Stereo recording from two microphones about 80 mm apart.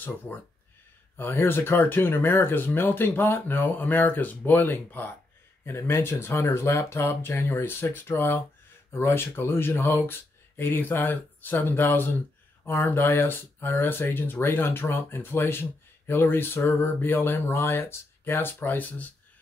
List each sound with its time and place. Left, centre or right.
1.1 s speech: left